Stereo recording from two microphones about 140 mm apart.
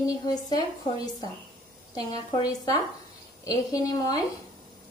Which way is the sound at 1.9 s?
30° left (ahead or behind).